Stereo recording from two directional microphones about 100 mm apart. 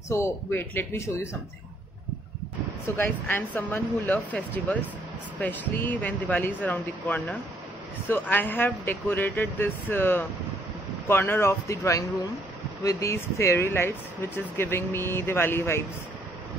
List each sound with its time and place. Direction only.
0.1 s speech: 25° left (ahead or behind)
3.0 s speech: 20° left (ahead or behind)